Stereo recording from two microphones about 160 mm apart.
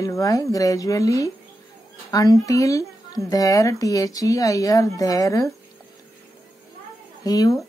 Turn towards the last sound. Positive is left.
turn(degrees=25)  # may be behind; listen again after turning